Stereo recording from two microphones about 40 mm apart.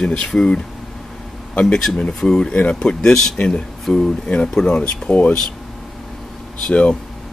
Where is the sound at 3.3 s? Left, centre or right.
Left.